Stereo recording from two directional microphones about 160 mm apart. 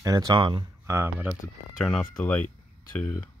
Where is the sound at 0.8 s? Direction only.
15° right (ahead or behind).